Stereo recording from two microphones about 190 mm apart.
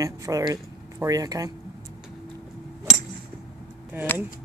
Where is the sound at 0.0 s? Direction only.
15° right (ahead or behind).